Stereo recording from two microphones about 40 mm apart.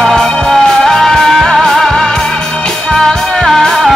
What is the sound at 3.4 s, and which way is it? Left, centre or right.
Music, centre.